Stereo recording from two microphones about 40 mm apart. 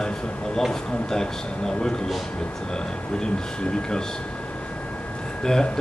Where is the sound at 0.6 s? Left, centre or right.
Centre.